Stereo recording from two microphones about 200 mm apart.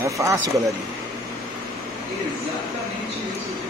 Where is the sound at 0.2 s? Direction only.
15° right (ahead or behind).